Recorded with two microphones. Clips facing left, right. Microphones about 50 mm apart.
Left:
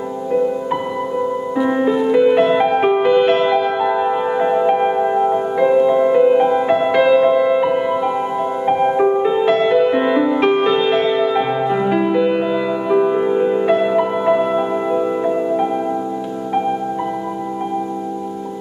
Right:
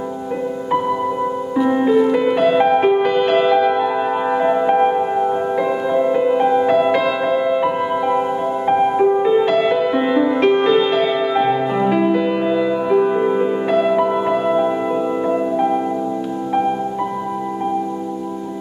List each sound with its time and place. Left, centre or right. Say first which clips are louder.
1.6 s music: right 2 dB; centre